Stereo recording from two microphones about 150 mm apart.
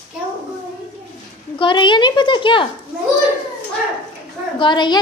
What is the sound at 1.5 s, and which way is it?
A woman's voice, 35° left (ahead or behind).